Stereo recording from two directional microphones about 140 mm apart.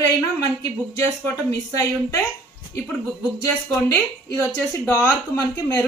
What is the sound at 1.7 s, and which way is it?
Speech, 25° left (ahead or behind).